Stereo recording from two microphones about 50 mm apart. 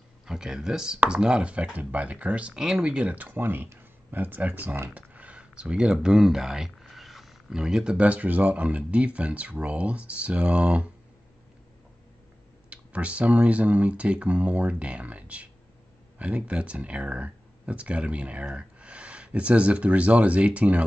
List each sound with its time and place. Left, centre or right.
0.3 s speech: centre; by 2.5 s right
2.5 s speech: centre
3.2 s speech: right
12.6 s speech: right